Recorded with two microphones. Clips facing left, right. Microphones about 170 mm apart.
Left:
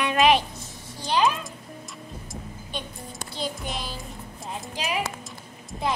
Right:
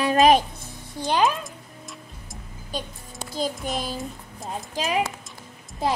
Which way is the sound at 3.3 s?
45° right (ahead or behind).